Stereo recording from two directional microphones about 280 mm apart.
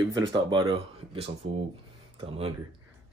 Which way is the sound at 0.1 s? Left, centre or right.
Centre.